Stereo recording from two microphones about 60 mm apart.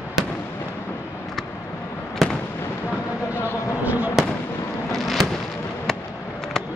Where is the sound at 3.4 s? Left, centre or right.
Left.